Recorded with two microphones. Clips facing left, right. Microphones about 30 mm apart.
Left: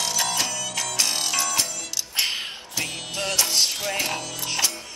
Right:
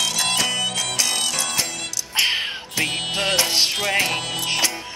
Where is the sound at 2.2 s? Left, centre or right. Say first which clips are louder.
Right 7 dB; right.